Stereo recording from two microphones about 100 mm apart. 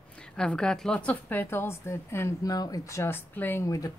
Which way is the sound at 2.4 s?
40° left (ahead or behind).